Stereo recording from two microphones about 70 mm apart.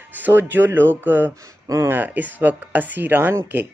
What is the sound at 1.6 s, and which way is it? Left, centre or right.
Speech, right.